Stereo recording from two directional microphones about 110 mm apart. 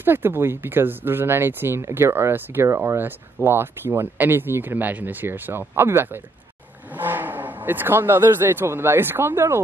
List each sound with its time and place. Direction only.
0.0 s speech: 20° right (ahead or behind)